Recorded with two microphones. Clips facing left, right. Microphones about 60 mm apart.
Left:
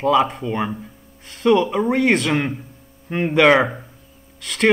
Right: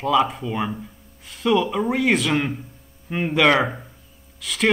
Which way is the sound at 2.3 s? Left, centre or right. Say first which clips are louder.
Left 1 dB; centre.